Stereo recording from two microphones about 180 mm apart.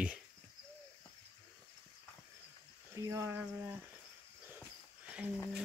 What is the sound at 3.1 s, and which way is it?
Speech, 15° right (ahead or behind).